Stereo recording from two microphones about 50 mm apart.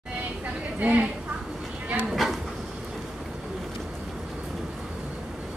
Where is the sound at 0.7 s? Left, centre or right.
Right.